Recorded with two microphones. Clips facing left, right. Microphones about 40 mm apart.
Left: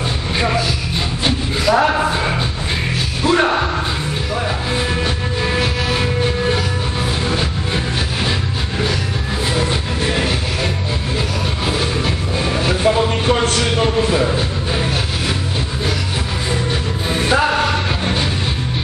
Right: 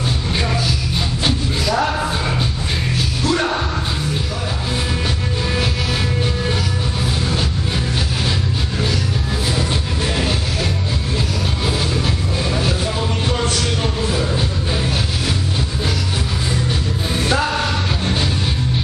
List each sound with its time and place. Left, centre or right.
1.2 s a sound: left
5.5 s vehicle: centre
7.2 s music: centre
9.6 s music: centre
12.8 s a sound: left
14.3 s music: centre
17.1 s music: centre